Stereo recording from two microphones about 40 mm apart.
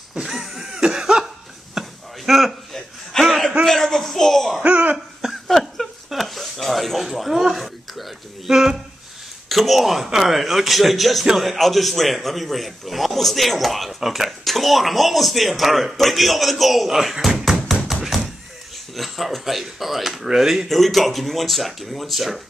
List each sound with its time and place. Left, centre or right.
0.2 s cough: centre
0.7 s cough: centre
1.8 s a sound: centre
4.6 s cough: right
4.9 s a sound: centre
9.5 s a man's voice: centre
18.1 s door: centre
18.9 s a man's voice: centre